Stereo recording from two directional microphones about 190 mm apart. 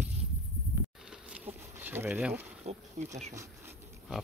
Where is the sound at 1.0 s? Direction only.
5° right (ahead or behind).